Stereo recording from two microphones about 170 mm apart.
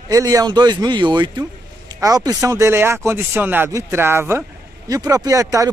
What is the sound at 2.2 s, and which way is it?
Speech, 20° right (ahead or behind).